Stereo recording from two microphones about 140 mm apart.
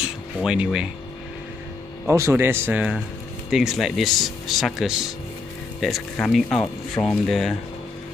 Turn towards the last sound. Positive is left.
turn(degrees=0)  # may be behind; listen again after turning